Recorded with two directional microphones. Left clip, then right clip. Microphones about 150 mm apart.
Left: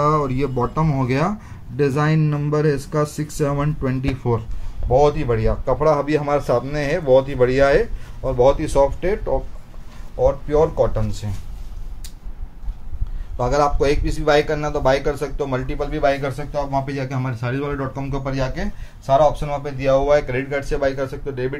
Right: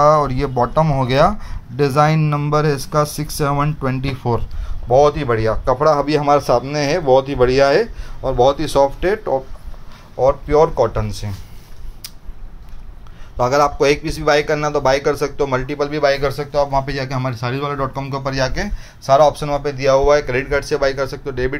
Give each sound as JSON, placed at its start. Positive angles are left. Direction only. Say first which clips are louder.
{"t": 0.0, "sound": "a man's voice", "louder": "right 6 dB", "side_deg": -25}
{"t": 10.2, "sound": "a man's voice", "louder": "right 4 dB", "side_deg": -20}
{"t": 13.4, "sound": "a man's voice", "louder": "right 4 dB", "side_deg": -20}